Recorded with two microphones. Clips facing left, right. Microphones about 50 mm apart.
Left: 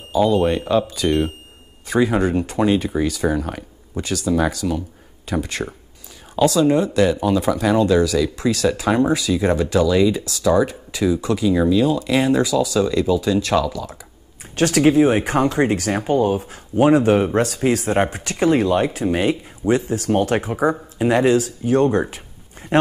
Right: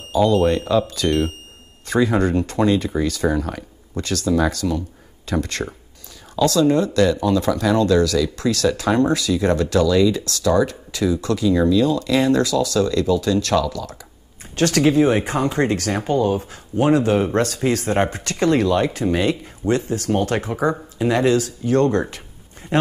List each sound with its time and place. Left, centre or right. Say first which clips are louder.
0.1 s speech: even; centre
6.4 s speech: left 2 dB; left
6.7 s speech: even; centre
17.3 s speech: left 1 dB; centre